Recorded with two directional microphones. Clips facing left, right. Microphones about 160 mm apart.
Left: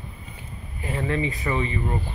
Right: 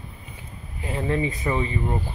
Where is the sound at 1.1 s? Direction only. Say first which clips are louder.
Right 2 dB; 20° right (ahead or behind).